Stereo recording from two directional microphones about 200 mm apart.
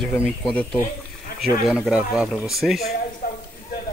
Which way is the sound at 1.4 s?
Centre (ahead or behind).